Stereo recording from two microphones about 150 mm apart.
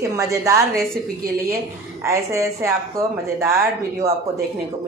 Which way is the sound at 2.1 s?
20° right (ahead or behind).